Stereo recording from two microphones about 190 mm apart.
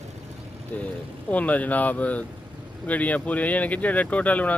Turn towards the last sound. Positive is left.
turn(degrees=5)  # may be behind; listen again after turning